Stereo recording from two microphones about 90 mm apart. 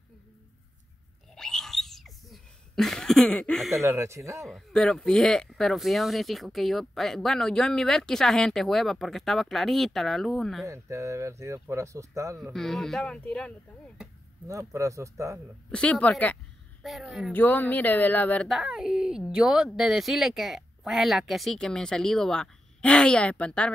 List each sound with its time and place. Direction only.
1.3 s a sound: 5° left (ahead or behind)
3.8 s speech: 30° right (ahead or behind)
4.5 s speech: centre (ahead or behind)
10.7 s speech: 35° right (ahead or behind)
12.5 s speech: 5° left (ahead or behind)
14.5 s speech: 35° right (ahead or behind)
15.7 s speech: 10° left (ahead or behind)
16.8 s speech: centre (ahead or behind)
17.3 s speech: 20° left (ahead or behind)
18.5 s speech: 5° right (ahead or behind); by 23.7 s 15° left (ahead or behind)